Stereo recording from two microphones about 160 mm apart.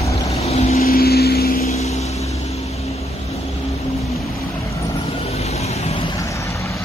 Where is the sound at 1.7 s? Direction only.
45° left (ahead or behind).